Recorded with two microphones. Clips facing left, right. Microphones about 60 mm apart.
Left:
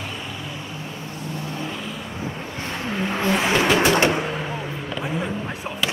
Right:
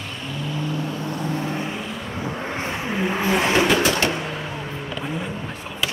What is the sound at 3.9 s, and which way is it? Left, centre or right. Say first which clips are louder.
Bird: left 4 dB; left.